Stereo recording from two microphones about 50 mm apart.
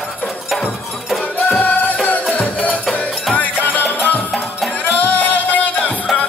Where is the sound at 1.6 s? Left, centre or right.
Left.